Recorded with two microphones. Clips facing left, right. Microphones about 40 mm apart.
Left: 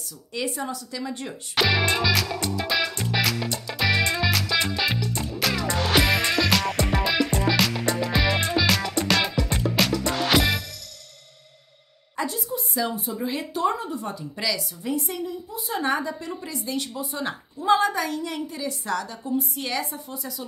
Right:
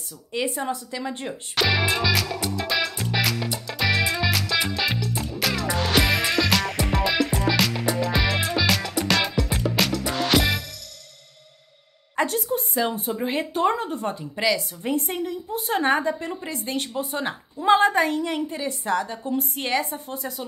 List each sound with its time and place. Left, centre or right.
0.3 s a woman's voice: right
1.5 s music: centre
12.2 s a woman's voice: right
14.3 s a woman's voice: right
19.2 s a woman's voice: right